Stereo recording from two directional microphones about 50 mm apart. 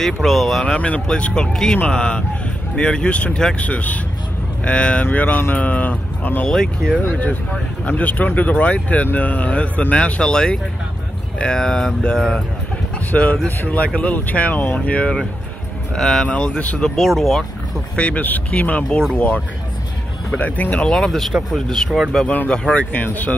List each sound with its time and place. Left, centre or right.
0.0 s speech: centre
0.7 s speech: left
1.2 s speech: centre
3.5 s speech: left
5.3 s speech: left
6.5 s speech: centre
7.1 s speech: left; by 12.4 s centre
13.1 s speech: left
15.9 s speech: centre
16.3 s speech: left
16.8 s speech: centre
17.9 s speech: left
20.9 s speech: centre
22.5 s speech: left